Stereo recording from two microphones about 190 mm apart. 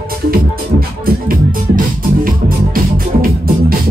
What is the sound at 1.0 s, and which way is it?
Music, 45° right (ahead or behind).